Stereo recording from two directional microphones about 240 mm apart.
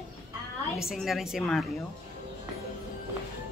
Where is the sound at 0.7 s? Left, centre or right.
Centre.